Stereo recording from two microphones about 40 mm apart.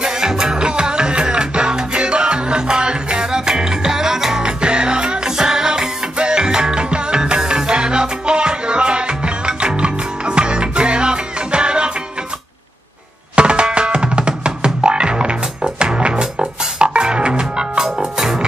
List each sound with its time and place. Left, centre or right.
0.0 s music: centre
13.4 s music: right